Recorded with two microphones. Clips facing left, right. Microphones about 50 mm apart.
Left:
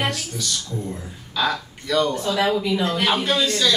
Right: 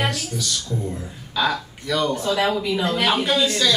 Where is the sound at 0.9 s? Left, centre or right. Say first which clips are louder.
Right 1 dB; centre.